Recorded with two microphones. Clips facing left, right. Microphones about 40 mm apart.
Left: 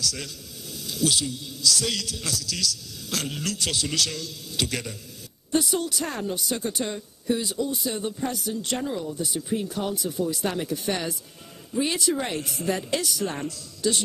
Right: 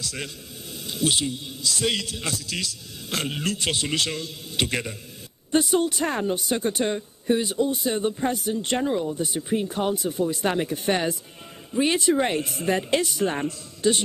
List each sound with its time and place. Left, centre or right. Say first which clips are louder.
0.0 s a man's voice: left 1 dB; right